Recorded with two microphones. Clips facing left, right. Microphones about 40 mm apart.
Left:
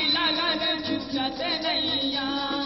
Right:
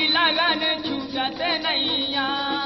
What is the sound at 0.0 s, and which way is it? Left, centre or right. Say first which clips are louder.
Music: right 5 dB; right.